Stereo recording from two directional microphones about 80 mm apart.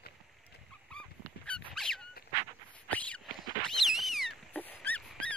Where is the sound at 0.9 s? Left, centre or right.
Centre.